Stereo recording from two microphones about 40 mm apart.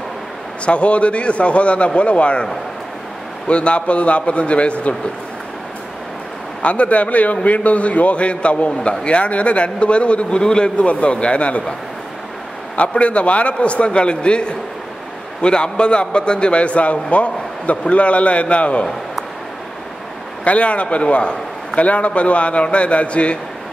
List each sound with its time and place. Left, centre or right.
0.7 s a man's voice: left
3.4 s a man's voice: left
6.6 s a man's voice: left
12.7 s a man's voice: left
20.4 s a man's voice: left